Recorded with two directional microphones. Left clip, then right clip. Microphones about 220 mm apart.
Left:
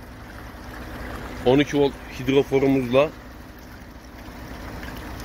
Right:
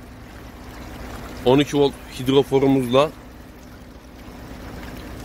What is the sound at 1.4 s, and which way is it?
Speech, 15° right (ahead or behind).